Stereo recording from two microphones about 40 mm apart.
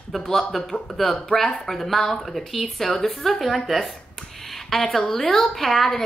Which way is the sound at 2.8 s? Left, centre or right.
Centre.